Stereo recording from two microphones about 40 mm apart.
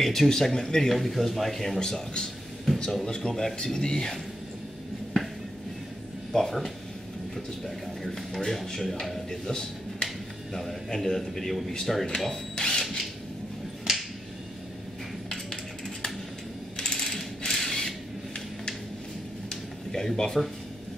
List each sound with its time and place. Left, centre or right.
0.0 s speech: centre
0.8 s speech: centre
1.8 s speech: centre
6.3 s speech: centre
8.1 s speech: centre
8.5 s speech: centre
9.3 s speech: centre
10.5 s a man's voice: centre
12.5 s drill: centre
13.9 s finger snapping: centre
15.2 s a sound: centre
16.7 s coin: centre
17.5 s mechanisms: centre
19.5 s a sound: centre